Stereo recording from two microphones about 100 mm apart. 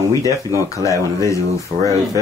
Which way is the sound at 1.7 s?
55° right (ahead or behind).